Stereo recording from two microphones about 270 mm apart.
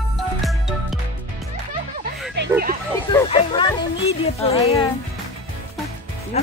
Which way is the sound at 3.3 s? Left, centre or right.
Centre.